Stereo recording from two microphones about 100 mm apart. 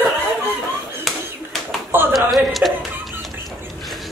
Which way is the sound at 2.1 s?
Centre (ahead or behind).